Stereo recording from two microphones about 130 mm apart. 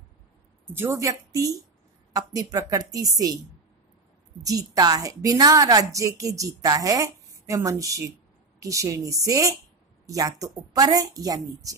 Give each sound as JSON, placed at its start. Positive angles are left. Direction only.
{"t": 0.7, "sound": "a woman's voice", "side_deg": -25}
{"t": 4.4, "sound": "a woman's voice", "side_deg": -30}